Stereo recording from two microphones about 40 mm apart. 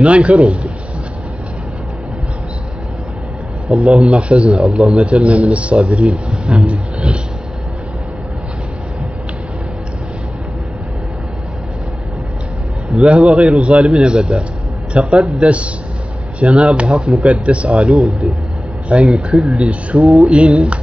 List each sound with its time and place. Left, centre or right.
0.0 s speech: right
3.7 s speech: right
6.6 s a sound: right
13.0 s speech: right
13.8 s speech: right
17.8 s a man's voice: centre
19.4 s speech: right